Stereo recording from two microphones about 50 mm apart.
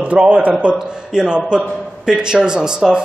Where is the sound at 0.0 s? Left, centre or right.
Right.